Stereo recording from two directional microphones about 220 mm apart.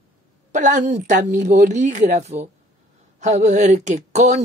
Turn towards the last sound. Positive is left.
turn(degrees=-30)  # may be behind; listen again after turning